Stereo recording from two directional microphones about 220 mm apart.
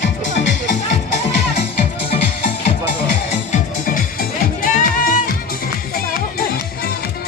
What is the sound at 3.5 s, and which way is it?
Music, 35° left (ahead or behind).